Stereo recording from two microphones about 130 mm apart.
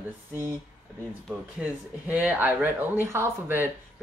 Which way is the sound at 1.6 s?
10° right (ahead or behind).